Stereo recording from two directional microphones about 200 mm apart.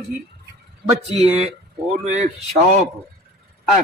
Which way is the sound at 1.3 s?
30° right (ahead or behind).